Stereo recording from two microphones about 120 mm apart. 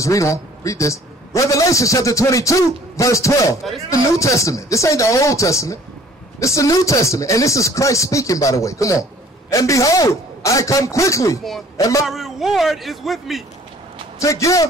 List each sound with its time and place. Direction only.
0.0 s a man's voice: 25° left (ahead or behind)
12.1 s speech: centre (ahead or behind)
14.2 s a man's voice: 25° left (ahead or behind)